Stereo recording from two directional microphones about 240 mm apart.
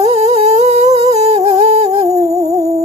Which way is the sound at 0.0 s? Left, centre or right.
Right.